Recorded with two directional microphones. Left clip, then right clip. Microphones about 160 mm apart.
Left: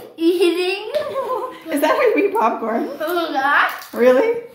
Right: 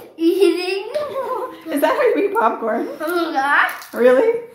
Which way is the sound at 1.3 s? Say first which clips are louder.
Left 1 dB; 15° right (ahead or behind).